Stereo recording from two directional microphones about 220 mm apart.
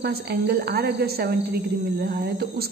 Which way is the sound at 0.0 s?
45° right (ahead or behind).